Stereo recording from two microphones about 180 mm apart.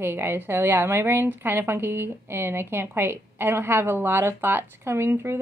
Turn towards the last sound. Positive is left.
turn(degrees=-15)  # may be behind; listen again after turning